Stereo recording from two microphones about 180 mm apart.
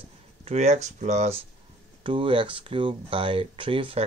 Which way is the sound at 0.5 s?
40° right (ahead or behind).